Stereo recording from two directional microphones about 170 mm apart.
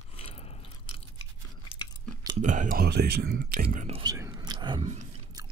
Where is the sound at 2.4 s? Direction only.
50° right (ahead or behind).